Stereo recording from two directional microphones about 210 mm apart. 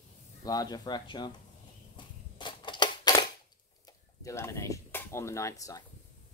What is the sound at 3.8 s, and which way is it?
Speech, 15° left (ahead or behind).